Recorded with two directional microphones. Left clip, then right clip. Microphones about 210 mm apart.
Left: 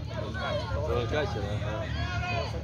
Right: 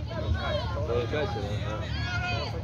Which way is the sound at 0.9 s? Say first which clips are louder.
Right 1 dB; 40° left (ahead or behind).